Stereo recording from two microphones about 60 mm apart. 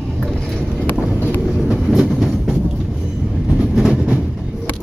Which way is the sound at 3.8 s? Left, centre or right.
Centre.